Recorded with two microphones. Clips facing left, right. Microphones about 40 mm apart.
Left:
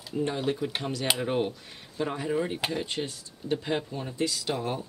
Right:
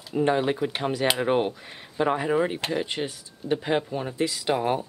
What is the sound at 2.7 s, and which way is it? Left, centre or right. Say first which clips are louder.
Speech: right 4 dB; centre.